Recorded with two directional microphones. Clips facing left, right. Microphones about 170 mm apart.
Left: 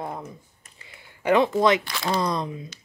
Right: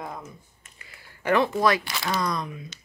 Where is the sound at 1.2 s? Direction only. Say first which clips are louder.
Left 3 dB; 20° left (ahead or behind).